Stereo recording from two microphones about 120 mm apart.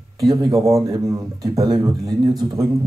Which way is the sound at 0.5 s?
25° right (ahead or behind).